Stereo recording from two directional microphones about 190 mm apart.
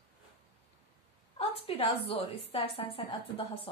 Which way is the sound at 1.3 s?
30° left (ahead or behind).